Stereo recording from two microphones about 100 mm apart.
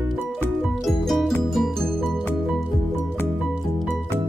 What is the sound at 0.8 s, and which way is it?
Music, centre (ahead or behind).